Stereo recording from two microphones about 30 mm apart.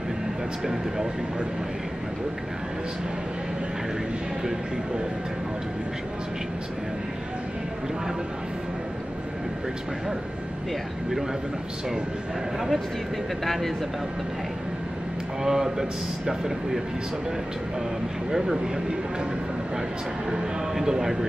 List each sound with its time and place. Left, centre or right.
12.5 s speech: centre
15.4 s speech: centre
20.2 s speech: centre